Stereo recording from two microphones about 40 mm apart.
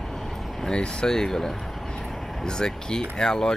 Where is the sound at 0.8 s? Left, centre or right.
Left.